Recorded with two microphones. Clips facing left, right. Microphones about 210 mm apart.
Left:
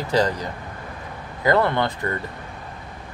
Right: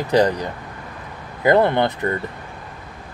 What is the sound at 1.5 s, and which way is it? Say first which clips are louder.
Speech: right 4 dB; 20° right (ahead or behind).